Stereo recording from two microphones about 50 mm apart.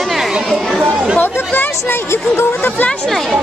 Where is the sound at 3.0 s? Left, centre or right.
Centre.